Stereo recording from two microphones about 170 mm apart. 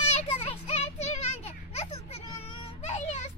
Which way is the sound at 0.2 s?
40° left (ahead or behind).